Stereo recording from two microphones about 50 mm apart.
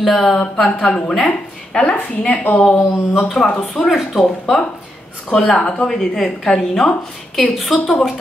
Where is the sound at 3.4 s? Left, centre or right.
Centre.